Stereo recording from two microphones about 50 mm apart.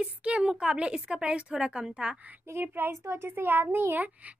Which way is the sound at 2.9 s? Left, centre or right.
Right.